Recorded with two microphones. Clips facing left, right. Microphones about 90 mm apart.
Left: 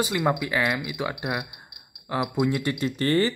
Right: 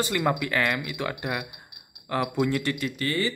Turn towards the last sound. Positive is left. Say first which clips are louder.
# left 5 dB
turn(degrees=35)  # may be behind; listen again after turning